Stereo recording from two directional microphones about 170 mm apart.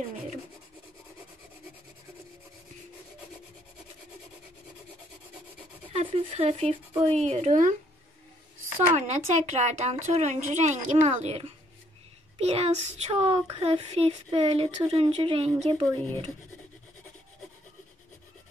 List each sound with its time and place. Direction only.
5.9 s speech: 35° right (ahead or behind)
8.9 s speech: 45° right (ahead or behind)